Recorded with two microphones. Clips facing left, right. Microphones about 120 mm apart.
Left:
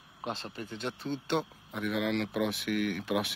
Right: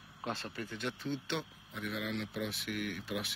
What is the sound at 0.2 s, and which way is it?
Speech, 20° left (ahead or behind).